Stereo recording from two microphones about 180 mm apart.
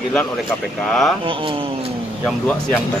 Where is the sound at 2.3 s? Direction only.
5° left (ahead or behind).